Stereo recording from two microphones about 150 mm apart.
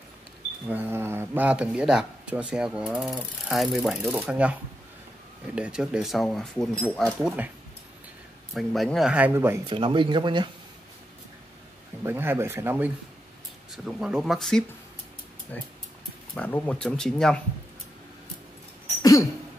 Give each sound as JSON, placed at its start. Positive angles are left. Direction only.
{"t": 0.7, "sound": "speech", "side_deg": -15}
{"t": 8.5, "sound": "speech", "side_deg": 0}
{"t": 9.7, "sound": "speech", "side_deg": -35}
{"t": 12.0, "sound": "speech", "side_deg": -15}
{"t": 13.7, "sound": "speech", "side_deg": -5}
{"t": 15.5, "sound": "speech", "side_deg": 10}